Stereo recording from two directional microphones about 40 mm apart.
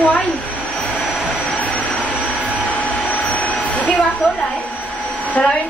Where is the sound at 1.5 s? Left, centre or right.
Left.